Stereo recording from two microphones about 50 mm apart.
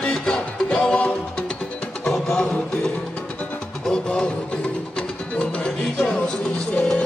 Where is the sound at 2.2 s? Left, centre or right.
Left.